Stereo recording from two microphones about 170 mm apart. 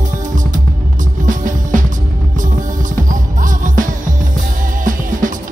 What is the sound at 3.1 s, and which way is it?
Music, 50° right (ahead or behind).